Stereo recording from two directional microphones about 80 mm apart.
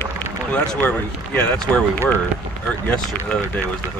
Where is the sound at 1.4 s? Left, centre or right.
Centre.